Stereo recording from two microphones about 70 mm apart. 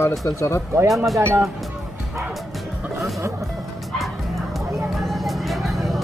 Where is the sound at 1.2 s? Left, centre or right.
Right.